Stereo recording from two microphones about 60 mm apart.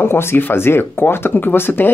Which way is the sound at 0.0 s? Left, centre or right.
Left.